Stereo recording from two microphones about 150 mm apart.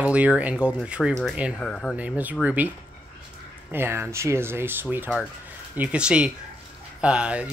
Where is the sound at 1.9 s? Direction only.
10° right (ahead or behind).